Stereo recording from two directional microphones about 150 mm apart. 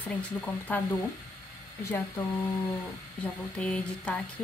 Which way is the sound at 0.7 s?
10° left (ahead or behind).